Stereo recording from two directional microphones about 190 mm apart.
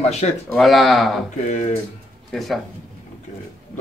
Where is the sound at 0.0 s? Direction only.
35° left (ahead or behind).